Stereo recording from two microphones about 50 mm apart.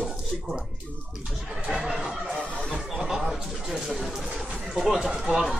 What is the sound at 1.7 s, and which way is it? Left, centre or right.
Speech, centre.